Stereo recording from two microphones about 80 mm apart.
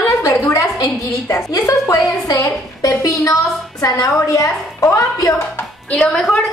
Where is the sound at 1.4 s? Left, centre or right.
Left.